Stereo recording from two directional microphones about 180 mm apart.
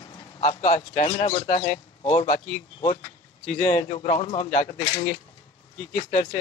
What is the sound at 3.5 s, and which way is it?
Speech, 50° left (ahead or behind).